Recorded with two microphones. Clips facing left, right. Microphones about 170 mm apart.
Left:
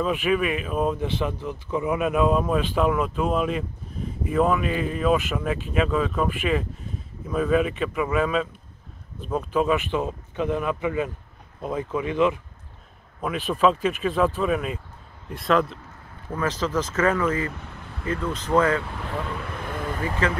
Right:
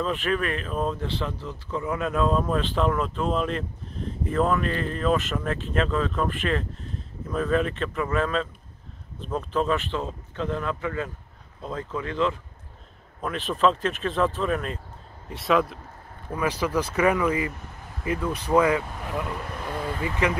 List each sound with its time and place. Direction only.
0.0 s speech: 10° left (ahead or behind); by 18.9 s 15° right (ahead or behind)
20.2 s speech: 15° right (ahead or behind)